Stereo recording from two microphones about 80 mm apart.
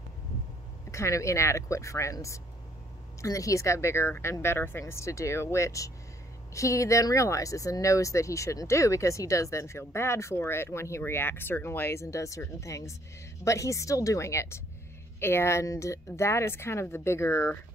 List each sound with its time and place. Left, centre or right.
0.9 s speech: left